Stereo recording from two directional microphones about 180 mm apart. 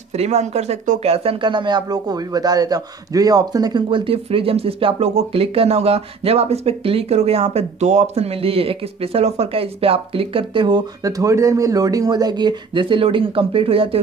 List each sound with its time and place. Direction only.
0.1 s speech: 35° right (ahead or behind)